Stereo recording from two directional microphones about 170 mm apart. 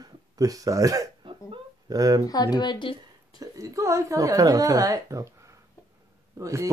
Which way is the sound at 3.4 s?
20° right (ahead or behind).